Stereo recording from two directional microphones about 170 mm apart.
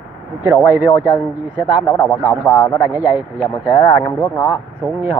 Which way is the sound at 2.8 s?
10° right (ahead or behind).